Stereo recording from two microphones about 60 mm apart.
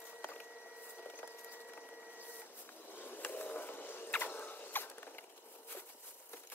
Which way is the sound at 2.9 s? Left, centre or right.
Left.